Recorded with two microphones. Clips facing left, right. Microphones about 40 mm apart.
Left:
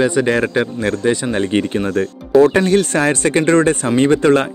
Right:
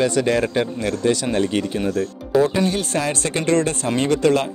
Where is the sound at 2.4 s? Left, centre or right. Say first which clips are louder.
Left 7 dB; left.